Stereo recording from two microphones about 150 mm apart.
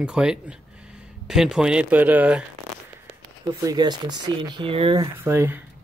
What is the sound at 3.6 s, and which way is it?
Speech, 25° right (ahead or behind).